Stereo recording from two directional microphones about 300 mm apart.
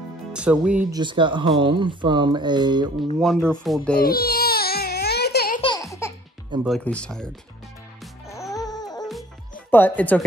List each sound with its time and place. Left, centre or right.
0.3 s speech: centre
1.0 s mantra: centre
3.2 s speech: centre
4.0 s baby cry: left
5.6 s baby laughter: centre
6.6 s speech: centre
8.0 s music: centre
9.7 s speech: centre